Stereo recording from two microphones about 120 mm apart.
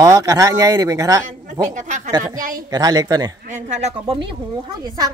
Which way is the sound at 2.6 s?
30° right (ahead or behind).